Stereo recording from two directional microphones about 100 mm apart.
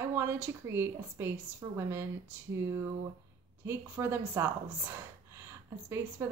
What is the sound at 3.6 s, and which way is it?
Speech, 25° right (ahead or behind).